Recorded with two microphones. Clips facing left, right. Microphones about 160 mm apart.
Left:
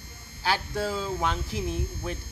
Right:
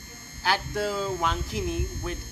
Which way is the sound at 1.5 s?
30° left (ahead or behind).